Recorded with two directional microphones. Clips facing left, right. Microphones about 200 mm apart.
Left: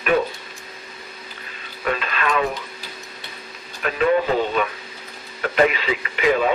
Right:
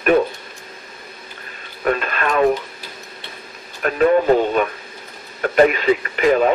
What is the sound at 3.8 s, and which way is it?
Speech, 45° right (ahead or behind).